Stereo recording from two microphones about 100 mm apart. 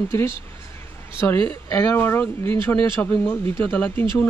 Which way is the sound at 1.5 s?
20° left (ahead or behind).